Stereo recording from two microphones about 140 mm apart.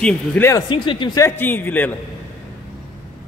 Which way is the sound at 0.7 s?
35° left (ahead or behind).